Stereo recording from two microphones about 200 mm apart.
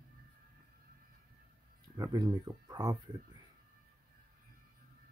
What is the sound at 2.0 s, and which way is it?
Speech, 20° right (ahead or behind).